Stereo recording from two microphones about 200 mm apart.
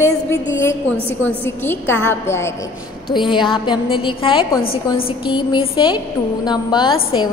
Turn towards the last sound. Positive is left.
turn(degrees=25)  # may be behind; listen again after turning